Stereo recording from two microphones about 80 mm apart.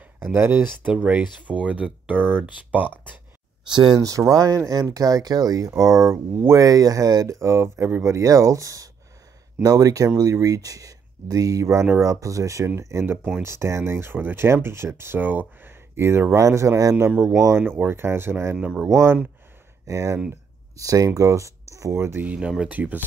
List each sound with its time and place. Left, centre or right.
0.2 s speech: right
3.6 s speech: right
4.3 s speech: right
5.7 s speech: right
6.6 s speech: right
7.3 s speech: right
18.6 s speech: centre
19.9 s speech: right
22.2 s speech: centre